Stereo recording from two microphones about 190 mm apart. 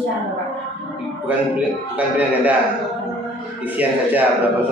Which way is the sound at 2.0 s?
10° right (ahead or behind).